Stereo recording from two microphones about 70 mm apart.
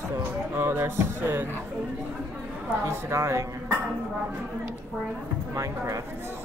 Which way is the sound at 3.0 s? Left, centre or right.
Right.